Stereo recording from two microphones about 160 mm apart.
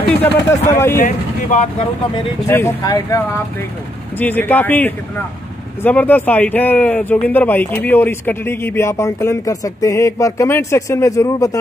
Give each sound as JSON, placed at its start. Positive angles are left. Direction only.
{"t": 0.1, "sound": "speech", "side_deg": 10}
{"t": 1.0, "sound": "speech", "side_deg": 50}
{"t": 2.4, "sound": "speech", "side_deg": 15}